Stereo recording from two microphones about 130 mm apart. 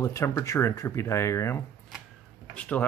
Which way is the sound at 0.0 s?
25° left (ahead or behind).